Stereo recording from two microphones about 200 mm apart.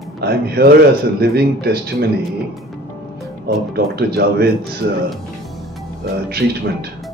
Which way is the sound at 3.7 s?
50° right (ahead or behind).